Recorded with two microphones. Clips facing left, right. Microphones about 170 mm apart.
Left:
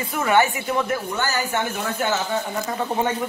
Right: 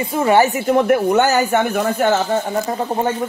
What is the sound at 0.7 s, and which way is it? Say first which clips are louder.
Speech: right 10 dB; 65° right (ahead or behind).